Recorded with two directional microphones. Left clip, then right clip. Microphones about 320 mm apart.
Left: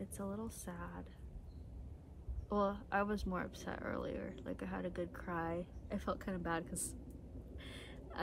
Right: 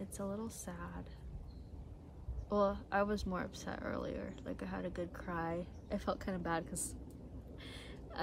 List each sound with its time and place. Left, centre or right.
0.0 s a woman's voice: centre
2.5 s speech: centre
7.6 s gasp: centre